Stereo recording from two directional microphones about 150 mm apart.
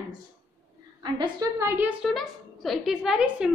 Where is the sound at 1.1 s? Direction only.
30° right (ahead or behind).